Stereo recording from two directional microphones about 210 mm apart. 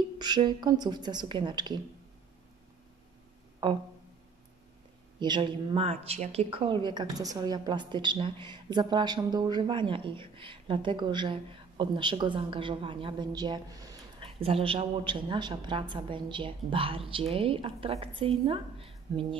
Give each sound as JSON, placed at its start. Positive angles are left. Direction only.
{"t": 0.2, "sound": "a woman's voice", "side_deg": -20}
{"t": 3.6, "sound": "a woman's voice", "side_deg": -20}
{"t": 5.2, "sound": "a woman's voice", "side_deg": -20}